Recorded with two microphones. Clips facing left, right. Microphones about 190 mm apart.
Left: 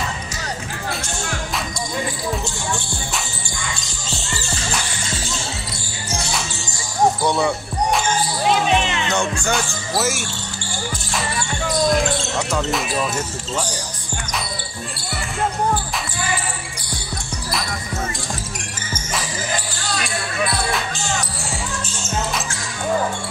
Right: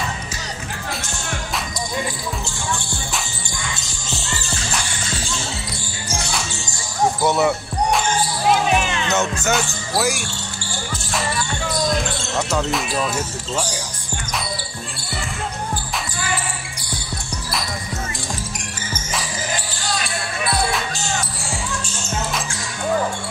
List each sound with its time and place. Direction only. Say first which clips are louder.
7.3 s music: right 1 dB; centre (ahead or behind)
8.7 s music: left 1 dB; 25° left (ahead or behind)
9.1 s speech: right 2 dB; 5° right (ahead or behind)
12.4 s speech: right 5 dB; centre (ahead or behind)